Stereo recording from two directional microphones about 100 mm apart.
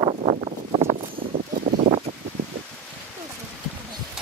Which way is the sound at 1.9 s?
90° right.